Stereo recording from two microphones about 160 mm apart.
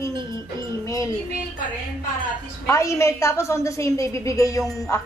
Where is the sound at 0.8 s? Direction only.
20° left (ahead or behind).